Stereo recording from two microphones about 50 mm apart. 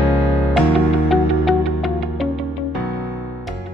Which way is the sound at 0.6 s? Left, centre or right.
Centre.